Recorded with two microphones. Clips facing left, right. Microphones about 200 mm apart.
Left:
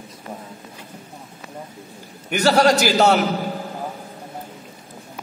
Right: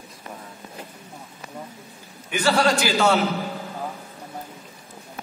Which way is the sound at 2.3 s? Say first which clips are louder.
Left 4 dB; 40° left (ahead or behind).